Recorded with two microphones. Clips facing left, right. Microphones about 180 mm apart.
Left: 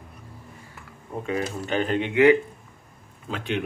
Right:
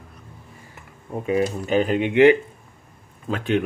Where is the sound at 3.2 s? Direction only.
45° right (ahead or behind).